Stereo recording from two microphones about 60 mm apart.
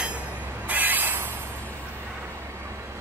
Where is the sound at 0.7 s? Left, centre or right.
Right.